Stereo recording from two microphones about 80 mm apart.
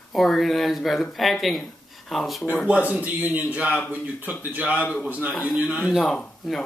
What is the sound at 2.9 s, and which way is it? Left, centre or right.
A man's voice, centre.